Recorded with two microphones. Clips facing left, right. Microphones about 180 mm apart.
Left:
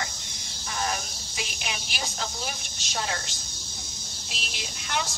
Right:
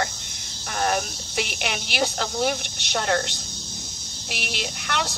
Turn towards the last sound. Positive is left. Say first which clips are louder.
# right 4 dB
turn(degrees=-65)  # may be behind; listen again after turning